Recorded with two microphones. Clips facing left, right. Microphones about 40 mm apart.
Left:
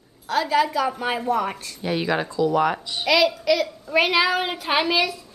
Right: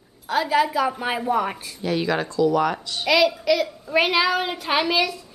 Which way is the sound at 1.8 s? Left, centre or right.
Centre.